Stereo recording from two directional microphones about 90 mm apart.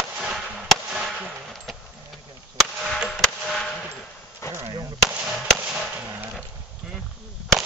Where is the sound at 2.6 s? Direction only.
Centre (ahead or behind).